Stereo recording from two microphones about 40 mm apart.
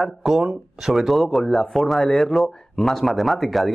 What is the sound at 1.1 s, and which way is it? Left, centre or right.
Speech, centre.